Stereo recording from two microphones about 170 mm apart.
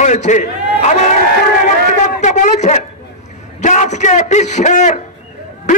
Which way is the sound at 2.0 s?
45° left (ahead or behind).